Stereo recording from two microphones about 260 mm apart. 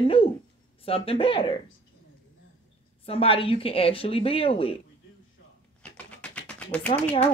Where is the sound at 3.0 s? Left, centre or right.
Left.